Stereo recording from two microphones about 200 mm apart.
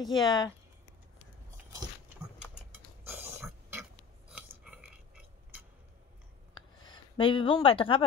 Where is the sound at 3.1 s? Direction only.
10° right (ahead or behind).